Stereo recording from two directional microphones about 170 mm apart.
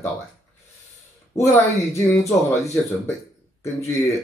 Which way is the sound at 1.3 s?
15° left (ahead or behind).